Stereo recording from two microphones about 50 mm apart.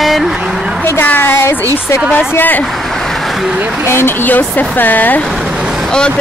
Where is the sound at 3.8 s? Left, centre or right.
Left.